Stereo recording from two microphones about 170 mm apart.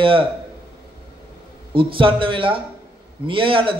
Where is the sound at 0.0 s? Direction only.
30° right (ahead or behind).